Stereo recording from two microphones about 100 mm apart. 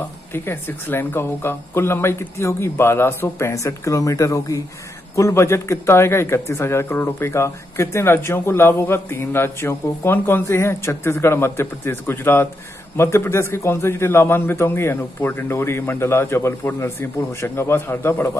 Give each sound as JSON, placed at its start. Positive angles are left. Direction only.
{"t": 0.3, "sound": "a man's voice", "side_deg": 20}